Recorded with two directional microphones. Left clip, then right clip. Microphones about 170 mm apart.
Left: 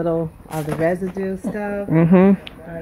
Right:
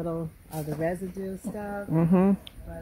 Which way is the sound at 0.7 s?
55° right (ahead or behind).